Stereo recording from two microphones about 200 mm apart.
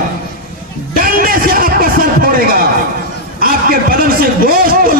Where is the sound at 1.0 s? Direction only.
45° right (ahead or behind).